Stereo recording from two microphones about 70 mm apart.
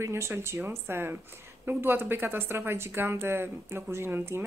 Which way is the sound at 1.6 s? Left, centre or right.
Right.